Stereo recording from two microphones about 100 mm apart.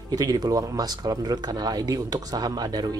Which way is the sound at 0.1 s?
40° right (ahead or behind).